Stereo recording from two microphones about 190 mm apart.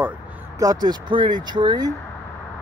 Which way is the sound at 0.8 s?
25° right (ahead or behind).